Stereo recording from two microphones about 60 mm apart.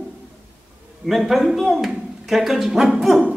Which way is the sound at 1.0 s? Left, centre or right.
Centre.